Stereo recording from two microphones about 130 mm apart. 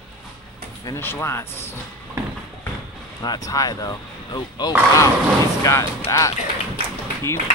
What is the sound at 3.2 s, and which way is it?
Speech, 30° left (ahead or behind).